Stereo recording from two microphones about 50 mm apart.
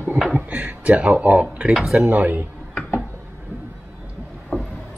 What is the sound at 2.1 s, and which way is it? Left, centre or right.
Speech, right.